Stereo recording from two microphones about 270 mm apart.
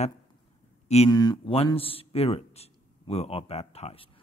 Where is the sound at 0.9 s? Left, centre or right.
Centre.